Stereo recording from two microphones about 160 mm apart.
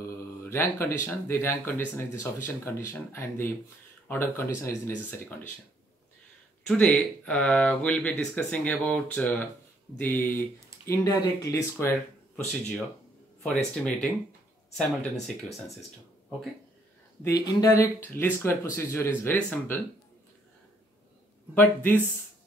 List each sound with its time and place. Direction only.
0.4 s speech: 15° left (ahead or behind)
6.6 s speech: 5° left (ahead or behind)
13.4 s speech: 5° left (ahead or behind)
17.2 s speech: 20° left (ahead or behind)
21.5 s speech: 15° left (ahead or behind)